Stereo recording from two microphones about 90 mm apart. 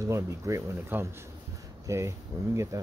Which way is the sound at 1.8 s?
35° right (ahead or behind).